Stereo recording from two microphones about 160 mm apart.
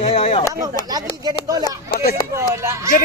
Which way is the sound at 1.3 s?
25° right (ahead or behind).